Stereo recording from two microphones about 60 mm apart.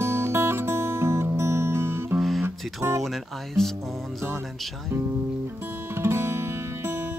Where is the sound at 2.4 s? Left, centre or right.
Right.